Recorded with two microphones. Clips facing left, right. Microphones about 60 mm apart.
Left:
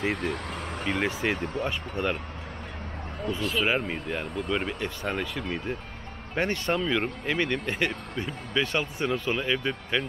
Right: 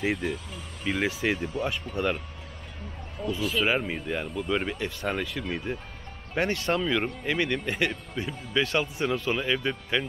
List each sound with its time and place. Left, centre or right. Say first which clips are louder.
0.0 s speech: even; centre
0.3 s speech: left 3 dB; left
0.8 s speech: right 1 dB; centre
3.3 s speech: right 1 dB; centre
6.7 s speech: even; centre